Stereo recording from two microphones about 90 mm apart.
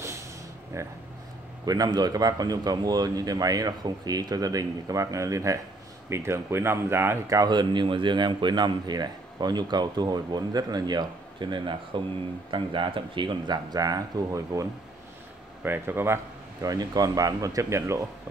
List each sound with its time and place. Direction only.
0.7 s speech: 35° right (ahead or behind)
1.9 s a man's voice: 50° right (ahead or behind); by 7.3 s 25° right (ahead or behind)
7.3 s a man's voice: 55° right (ahead or behind); by 14.7 s 40° right (ahead or behind)
15.6 s speech: 25° right (ahead or behind)
16.6 s speech: 45° right (ahead or behind)